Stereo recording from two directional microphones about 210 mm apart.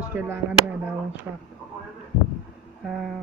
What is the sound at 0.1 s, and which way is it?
Speech, 10° right (ahead or behind).